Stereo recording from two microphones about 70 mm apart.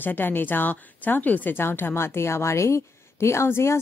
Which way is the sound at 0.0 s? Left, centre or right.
Left.